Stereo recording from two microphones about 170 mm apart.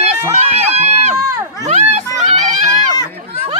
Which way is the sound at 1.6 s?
40° right (ahead or behind).